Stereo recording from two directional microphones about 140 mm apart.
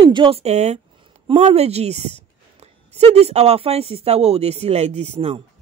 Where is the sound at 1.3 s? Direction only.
50° right (ahead or behind).